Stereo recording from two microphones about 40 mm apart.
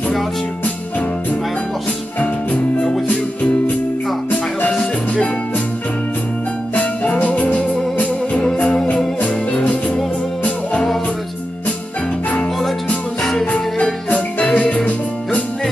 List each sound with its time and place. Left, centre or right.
4.3 s music: left
6.7 s music: left
7.5 s organ: left
8.8 s music: left
13.2 s music: centre
13.5 s music: left